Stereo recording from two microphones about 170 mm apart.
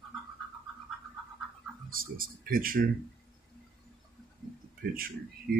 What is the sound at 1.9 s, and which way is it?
Speech, 55° right (ahead or behind).